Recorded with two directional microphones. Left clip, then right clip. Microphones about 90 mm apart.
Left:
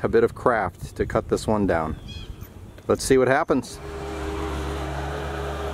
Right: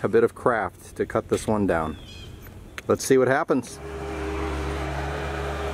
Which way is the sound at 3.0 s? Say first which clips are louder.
Left 1 dB; 10° left (ahead or behind).